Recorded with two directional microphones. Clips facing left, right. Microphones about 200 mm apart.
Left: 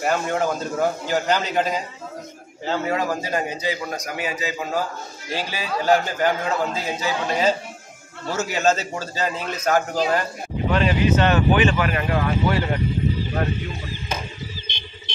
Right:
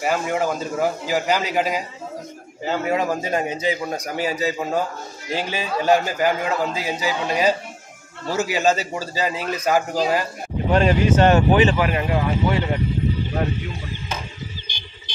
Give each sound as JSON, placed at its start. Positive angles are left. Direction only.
{"t": 0.0, "sound": "a man's voice", "side_deg": -5}
{"t": 2.9, "sound": "a man's voice", "side_deg": -20}
{"t": 5.3, "sound": "a man's voice", "side_deg": -20}
{"t": 10.7, "sound": "speech", "side_deg": -45}
{"t": 11.8, "sound": "a man's voice", "side_deg": -15}
{"t": 14.7, "sound": "a sound", "side_deg": 25}